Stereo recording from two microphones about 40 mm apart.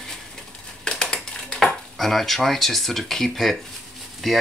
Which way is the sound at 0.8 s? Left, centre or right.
Centre.